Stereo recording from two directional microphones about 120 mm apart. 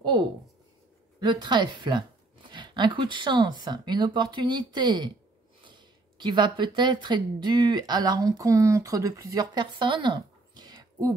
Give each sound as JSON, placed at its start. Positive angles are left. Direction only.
{"t": 1.2, "sound": "speech", "side_deg": -40}